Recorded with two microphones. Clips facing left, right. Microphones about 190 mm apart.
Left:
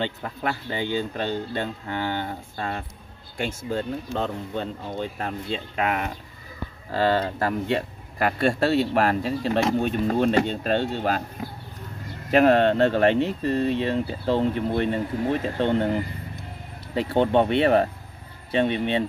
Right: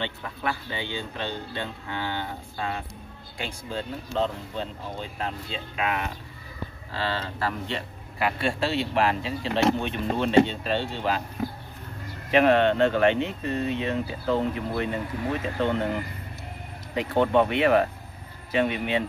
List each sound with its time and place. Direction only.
0.0 s speech: 40° left (ahead or behind)
12.3 s speech: 40° left (ahead or behind)